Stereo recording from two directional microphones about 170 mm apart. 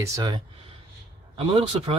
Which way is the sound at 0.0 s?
20° right (ahead or behind).